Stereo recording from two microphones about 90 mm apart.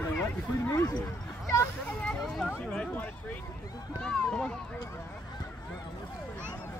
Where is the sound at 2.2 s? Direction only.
Centre (ahead or behind).